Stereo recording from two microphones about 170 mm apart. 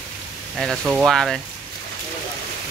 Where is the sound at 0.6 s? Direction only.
Centre (ahead or behind).